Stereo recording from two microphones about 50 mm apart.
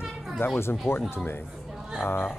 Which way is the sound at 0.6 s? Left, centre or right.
Left.